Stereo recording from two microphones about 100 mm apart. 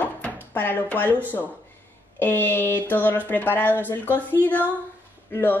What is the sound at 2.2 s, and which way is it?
Speech, 20° left (ahead or behind).